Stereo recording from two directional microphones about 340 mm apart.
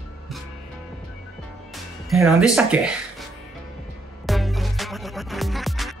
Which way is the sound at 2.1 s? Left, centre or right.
Centre.